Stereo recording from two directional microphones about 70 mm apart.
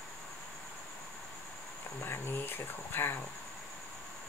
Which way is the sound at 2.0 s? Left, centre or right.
Left.